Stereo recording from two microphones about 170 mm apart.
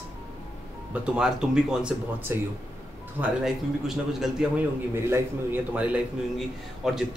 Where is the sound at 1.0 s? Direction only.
5° right (ahead or behind).